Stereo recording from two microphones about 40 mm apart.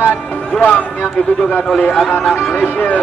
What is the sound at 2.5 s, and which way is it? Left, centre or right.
Speech, left.